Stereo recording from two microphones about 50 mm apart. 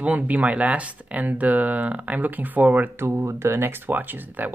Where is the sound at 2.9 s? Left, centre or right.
Right.